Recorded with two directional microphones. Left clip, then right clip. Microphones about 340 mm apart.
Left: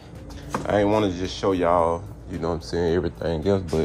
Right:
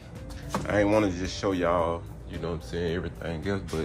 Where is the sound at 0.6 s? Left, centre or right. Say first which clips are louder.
Left 3 dB; centre.